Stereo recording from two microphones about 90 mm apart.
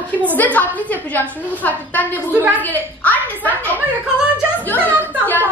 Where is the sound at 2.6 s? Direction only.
20° left (ahead or behind).